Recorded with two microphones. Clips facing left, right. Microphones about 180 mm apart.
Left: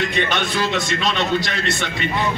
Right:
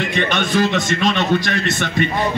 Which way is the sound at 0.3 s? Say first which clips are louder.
Right 4 dB; 45° right (ahead or behind).